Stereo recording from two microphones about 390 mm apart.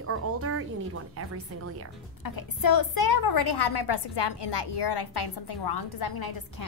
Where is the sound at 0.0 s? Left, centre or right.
Right.